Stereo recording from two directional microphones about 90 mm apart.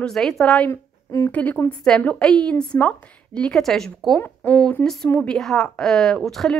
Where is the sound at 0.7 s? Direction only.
35° left (ahead or behind).